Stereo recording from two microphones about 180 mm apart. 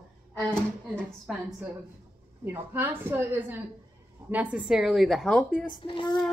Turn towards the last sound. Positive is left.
turn(degrees=30)  # may be behind; listen again after turning